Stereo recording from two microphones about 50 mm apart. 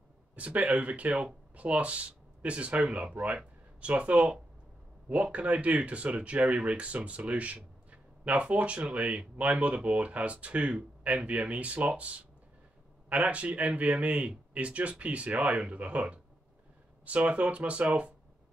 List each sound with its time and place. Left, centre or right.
0.4 s speech: right